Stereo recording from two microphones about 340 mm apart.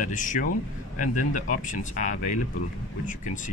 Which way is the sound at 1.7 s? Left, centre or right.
Left.